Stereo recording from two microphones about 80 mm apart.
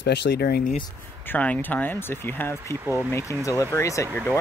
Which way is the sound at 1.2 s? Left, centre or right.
Centre.